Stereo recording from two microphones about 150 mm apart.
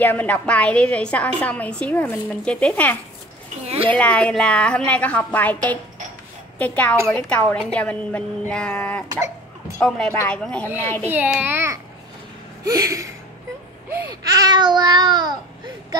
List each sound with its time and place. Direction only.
0.0 s a woman's voice: 10° left (ahead or behind)
3.6 s a woman's voice: 40° right (ahead or behind)
3.9 s a woman's voice: 5° left (ahead or behind)
6.6 s a woman's voice: 10° left (ahead or behind)
11.1 s a child's voice: 10° right (ahead or behind)
12.6 s gasp: 20° right (ahead or behind)
13.8 s babbling: 20° right (ahead or behind)